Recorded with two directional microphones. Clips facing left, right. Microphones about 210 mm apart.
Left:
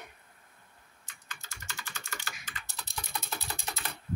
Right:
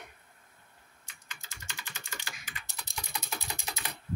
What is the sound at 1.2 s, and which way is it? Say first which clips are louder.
Typing: left 2 dB; 15° right (ahead or behind).